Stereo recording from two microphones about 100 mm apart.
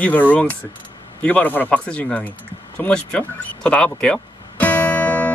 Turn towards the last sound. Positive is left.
turn(degrees=15)  # may be behind; listen again after turning